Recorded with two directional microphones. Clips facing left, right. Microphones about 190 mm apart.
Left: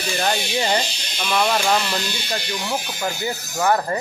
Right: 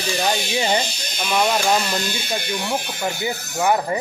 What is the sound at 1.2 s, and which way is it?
Speech, 5° right (ahead or behind).